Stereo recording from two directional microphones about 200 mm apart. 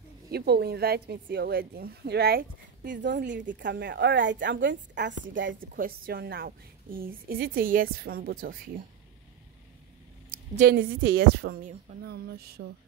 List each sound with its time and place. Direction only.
0.3 s a woman's voice: 50° right (ahead or behind)
3.0 s a woman's voice: 60° right (ahead or behind)
5.6 s a woman's voice: 45° right (ahead or behind)
10.3 s a sound: 40° right (ahead or behind)
10.8 s a woman's voice: 55° right (ahead or behind)